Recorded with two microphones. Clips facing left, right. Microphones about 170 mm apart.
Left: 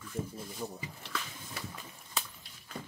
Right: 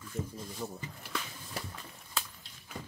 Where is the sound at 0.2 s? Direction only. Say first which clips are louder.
Even; 10° left (ahead or behind).